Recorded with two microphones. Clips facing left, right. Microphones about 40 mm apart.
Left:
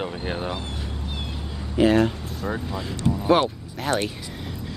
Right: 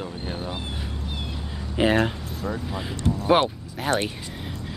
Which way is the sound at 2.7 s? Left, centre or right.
Centre.